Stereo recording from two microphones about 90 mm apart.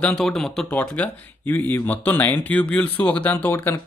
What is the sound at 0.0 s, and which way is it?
Speech, 5° left (ahead or behind).